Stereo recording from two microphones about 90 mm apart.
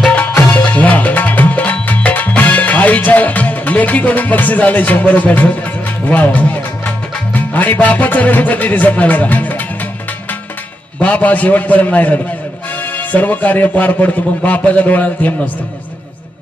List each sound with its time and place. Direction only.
0.0 s music: 15° left (ahead or behind)
6.0 s a man's voice: 20° left (ahead or behind)
11.0 s a man's voice: 15° left (ahead or behind)